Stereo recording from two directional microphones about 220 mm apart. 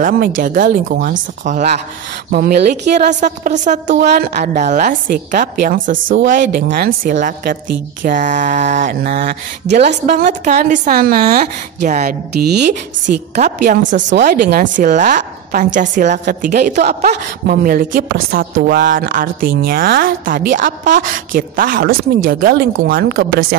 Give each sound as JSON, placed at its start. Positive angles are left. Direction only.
{"t": 0.0, "sound": "a woman's voice", "side_deg": -35}
{"t": 3.1, "sound": "speech", "side_deg": -35}
{"t": 13.4, "sound": "speech", "side_deg": -35}